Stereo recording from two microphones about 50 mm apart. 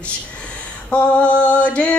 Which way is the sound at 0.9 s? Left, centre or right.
Left.